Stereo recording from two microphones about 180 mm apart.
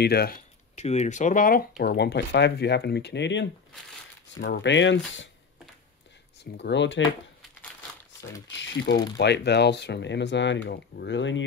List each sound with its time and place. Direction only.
0.0 s speech: 60° left (ahead or behind)
0.7 s speech: 40° left (ahead or behind)
1.8 s speech: 65° left (ahead or behind); by 5.3 s 90° left
6.4 s speech: 75° left (ahead or behind)
8.5 s speech: 85° left